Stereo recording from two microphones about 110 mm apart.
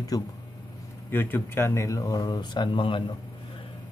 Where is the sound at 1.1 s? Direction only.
20° left (ahead or behind); by 3.0 s 50° left (ahead or behind).